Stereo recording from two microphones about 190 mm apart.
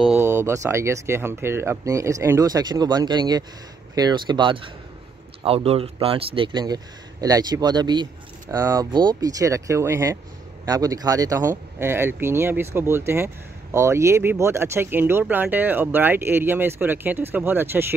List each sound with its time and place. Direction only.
0.0 s speech: 10° right (ahead or behind)